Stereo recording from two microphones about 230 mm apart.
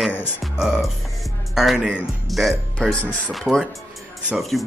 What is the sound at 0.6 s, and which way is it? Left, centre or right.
Speech, centre.